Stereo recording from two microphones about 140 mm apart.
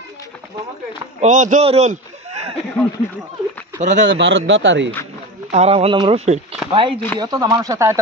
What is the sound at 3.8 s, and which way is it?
Speech, 60° right (ahead or behind).